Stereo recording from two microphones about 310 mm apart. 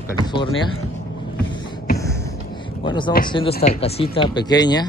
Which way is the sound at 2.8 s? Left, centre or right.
Centre.